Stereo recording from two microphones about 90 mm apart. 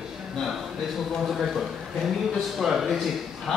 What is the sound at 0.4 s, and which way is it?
A man's voice, centre (ahead or behind).